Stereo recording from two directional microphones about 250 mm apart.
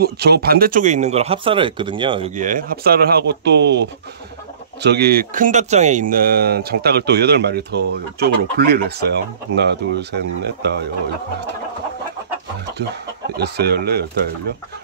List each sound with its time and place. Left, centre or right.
0.0 s speech: right
4.8 s speech: right
13.4 s speech: right